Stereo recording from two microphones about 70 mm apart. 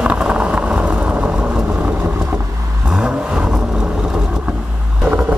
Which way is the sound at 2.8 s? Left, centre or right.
Centre.